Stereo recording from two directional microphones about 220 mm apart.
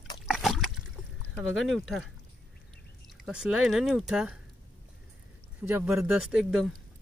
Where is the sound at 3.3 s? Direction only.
5° right (ahead or behind).